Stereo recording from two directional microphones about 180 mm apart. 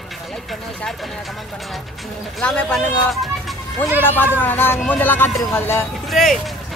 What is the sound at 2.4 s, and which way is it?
Speech, 5° left (ahead or behind).